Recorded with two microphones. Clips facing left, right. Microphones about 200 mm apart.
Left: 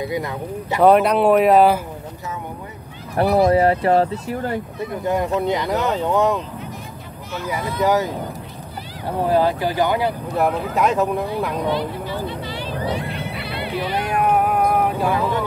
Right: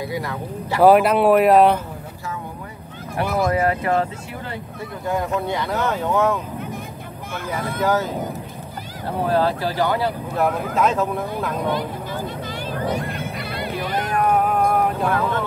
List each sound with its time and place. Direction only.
0.0 s speech: 20° left (ahead or behind)
0.7 s speech: centre (ahead or behind)
3.2 s speech: 30° left (ahead or behind)
5.5 s speech: 15° left (ahead or behind)
7.3 s speech: 50° right (ahead or behind)
7.8 s speech: 15° left (ahead or behind)
11.7 s vehicle: 45° right (ahead or behind)
14.1 s vehicle: 10° left (ahead or behind)